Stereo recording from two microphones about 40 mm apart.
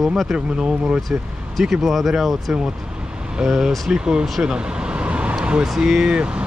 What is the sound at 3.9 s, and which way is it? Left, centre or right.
Speech, right.